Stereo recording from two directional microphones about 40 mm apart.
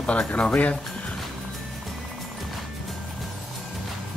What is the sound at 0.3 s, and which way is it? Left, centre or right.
Speech, left.